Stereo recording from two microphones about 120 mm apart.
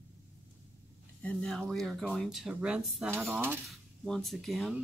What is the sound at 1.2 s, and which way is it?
Speech, 10° left (ahead or behind).